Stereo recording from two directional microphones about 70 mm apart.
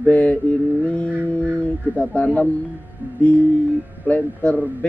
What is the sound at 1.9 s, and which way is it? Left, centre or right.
Speech, centre.